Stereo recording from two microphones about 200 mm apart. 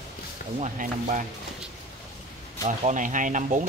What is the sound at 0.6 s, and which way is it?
Speech, 40° right (ahead or behind).